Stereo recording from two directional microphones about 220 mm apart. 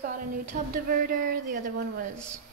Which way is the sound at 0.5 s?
40° right (ahead or behind).